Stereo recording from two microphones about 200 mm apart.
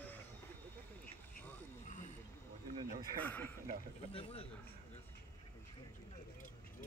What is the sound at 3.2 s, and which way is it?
Speech, 10° left (ahead or behind).